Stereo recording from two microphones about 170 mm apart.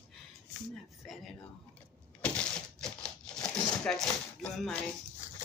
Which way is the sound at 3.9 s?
5° left (ahead or behind).